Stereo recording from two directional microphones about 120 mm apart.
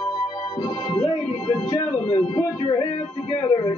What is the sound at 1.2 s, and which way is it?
Speech, 50° left (ahead or behind).